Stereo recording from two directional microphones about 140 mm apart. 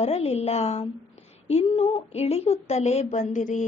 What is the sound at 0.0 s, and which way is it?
A woman's voice, 50° left (ahead or behind).